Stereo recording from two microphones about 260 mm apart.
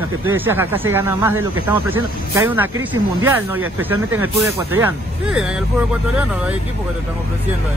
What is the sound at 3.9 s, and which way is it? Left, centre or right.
Speech, right.